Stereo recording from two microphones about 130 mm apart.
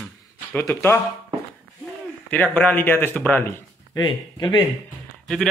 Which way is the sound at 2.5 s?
15° left (ahead or behind).